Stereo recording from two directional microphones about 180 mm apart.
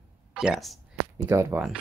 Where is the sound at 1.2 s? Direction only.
15° right (ahead or behind).